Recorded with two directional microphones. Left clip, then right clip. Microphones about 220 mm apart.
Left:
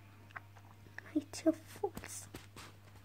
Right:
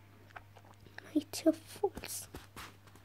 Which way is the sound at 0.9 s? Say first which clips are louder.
Right 3 dB; 15° right (ahead or behind).